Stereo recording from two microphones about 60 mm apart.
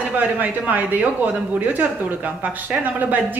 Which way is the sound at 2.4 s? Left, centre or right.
Right.